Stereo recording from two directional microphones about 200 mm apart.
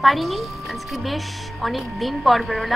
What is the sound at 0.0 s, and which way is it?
A woman's voice, centre (ahead or behind).